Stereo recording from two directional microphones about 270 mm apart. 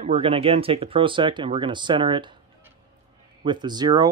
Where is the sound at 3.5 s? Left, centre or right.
Centre.